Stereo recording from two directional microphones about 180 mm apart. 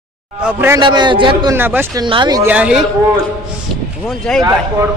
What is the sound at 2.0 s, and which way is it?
Speech, 25° right (ahead or behind).